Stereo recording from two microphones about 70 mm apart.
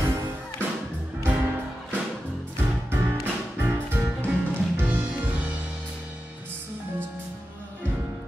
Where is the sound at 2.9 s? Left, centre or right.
Right.